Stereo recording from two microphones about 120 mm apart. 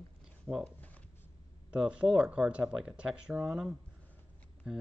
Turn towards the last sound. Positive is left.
turn(degrees=-5)  # may be behind; listen again after turning